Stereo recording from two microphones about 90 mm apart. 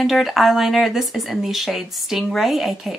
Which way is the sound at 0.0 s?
5° right (ahead or behind).